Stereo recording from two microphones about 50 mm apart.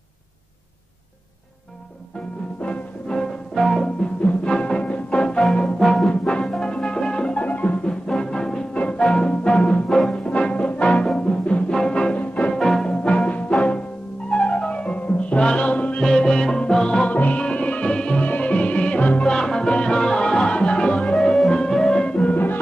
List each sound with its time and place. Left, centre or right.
2.6 s music: centre
4.0 s music: left
5.8 s music: centre
6.2 s music: centre
7.4 s music: left
12.5 s music: centre
12.9 s music: left
16.0 s music: centre
17.1 s music: left
19.3 s music: centre
22.3 s music: left